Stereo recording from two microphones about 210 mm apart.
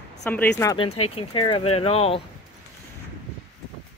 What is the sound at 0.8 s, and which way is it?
Speech, 90° left.